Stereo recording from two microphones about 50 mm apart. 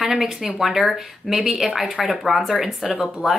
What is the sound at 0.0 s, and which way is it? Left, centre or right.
Speech, centre.